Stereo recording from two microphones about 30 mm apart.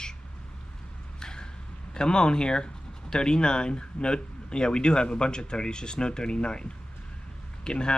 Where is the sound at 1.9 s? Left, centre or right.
Left.